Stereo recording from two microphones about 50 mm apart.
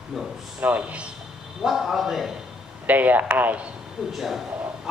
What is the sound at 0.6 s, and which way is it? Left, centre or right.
Speech, right.